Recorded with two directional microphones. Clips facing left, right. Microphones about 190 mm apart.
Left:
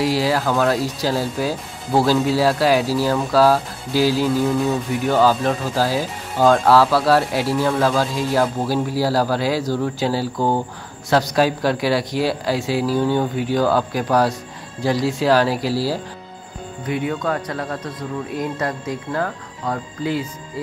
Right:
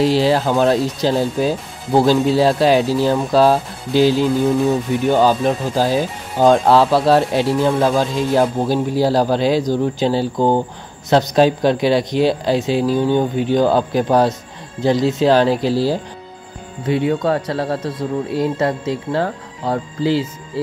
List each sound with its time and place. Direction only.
0.0 s speech: 25° right (ahead or behind)